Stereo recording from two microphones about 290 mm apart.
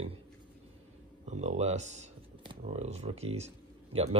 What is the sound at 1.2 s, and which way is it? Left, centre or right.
Speech, right.